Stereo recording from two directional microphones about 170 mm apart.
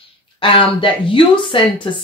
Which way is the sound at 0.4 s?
30° left (ahead or behind).